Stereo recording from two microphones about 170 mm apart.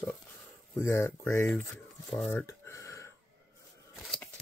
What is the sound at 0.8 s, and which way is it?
Speech, 15° left (ahead or behind).